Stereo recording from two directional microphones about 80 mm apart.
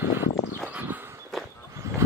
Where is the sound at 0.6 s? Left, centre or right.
Centre.